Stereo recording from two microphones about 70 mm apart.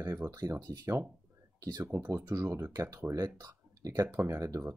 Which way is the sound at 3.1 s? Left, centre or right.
Right.